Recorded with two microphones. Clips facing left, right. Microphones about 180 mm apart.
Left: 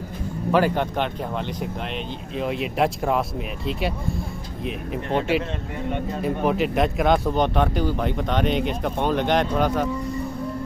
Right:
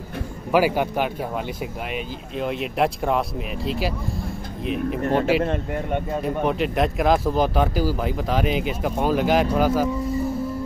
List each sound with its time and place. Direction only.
0.5 s speech: 10° right (ahead or behind)
2.3 s speech: centre (ahead or behind)
5.1 s speech: centre (ahead or behind)
5.4 s speech: 55° right (ahead or behind)
6.2 s speech: centre (ahead or behind)